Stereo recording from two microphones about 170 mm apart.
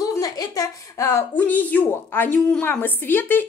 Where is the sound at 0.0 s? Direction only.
20° left (ahead or behind).